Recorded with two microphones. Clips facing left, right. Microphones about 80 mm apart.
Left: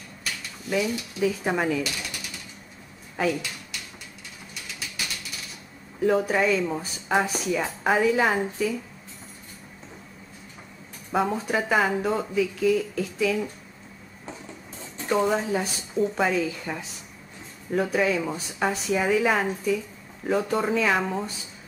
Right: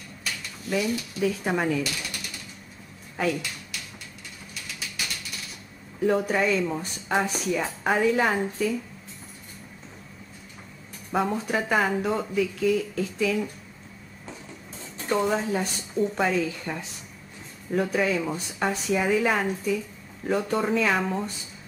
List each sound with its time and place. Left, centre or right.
0.2 s cutlery: centre
3.2 s a sound: centre
4.6 s ratchet: centre
5.9 s speech: centre
11.1 s speech: centre
15.0 s speech: centre